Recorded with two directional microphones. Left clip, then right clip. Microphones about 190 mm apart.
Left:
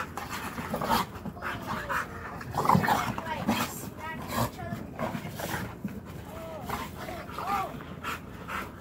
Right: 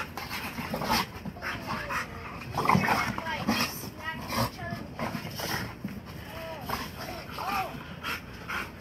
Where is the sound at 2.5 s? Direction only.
25° left (ahead or behind).